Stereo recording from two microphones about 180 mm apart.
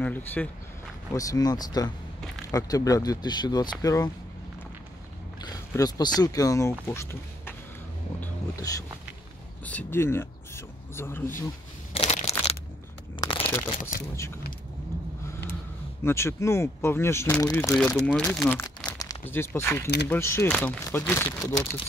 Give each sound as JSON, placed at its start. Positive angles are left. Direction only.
{"t": 0.0, "sound": "speech", "side_deg": 10}
{"t": 5.4, "sound": "speech", "side_deg": 20}
{"t": 8.2, "sound": "a sound", "side_deg": 15}
{"t": 9.7, "sound": "speech", "side_deg": 10}
{"t": 11.9, "sound": "a sound", "side_deg": 35}
{"t": 13.1, "sound": "crumpling", "side_deg": 25}
{"t": 13.7, "sound": "speech", "side_deg": 45}
{"t": 16.0, "sound": "speech", "side_deg": 15}
{"t": 17.7, "sound": "speech", "side_deg": 5}
{"t": 18.6, "sound": "crumpling", "side_deg": 10}
{"t": 18.9, "sound": "speech", "side_deg": 15}